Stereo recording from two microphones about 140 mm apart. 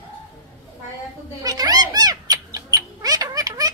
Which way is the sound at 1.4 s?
30° right (ahead or behind).